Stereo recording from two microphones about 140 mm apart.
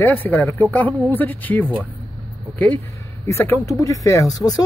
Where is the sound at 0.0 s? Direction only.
15° left (ahead or behind).